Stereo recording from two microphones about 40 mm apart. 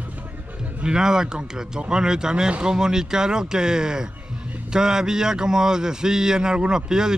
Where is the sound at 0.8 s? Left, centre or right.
Centre.